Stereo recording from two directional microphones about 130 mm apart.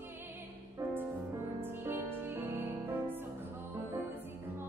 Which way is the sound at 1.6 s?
15° right (ahead or behind).